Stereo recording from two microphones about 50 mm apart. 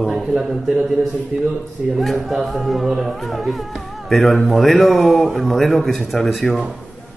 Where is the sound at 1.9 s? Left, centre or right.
Centre.